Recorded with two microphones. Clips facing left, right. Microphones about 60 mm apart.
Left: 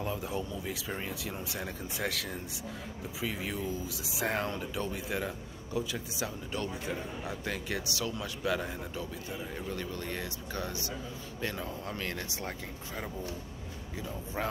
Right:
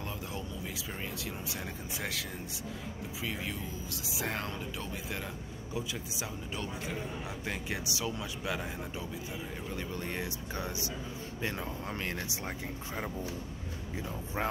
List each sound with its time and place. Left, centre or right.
0.0 s speech: centre; by 14.5 s right